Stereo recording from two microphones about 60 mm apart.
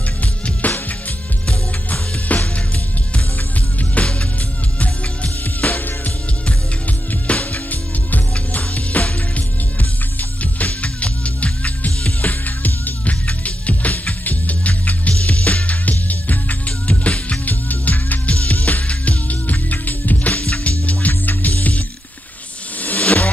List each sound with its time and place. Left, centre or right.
0.2 s music: left
3.9 s music: centre
22.8 s vehicle: left